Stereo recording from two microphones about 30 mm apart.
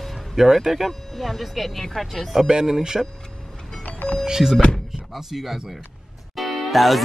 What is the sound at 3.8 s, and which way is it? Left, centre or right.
Music, left.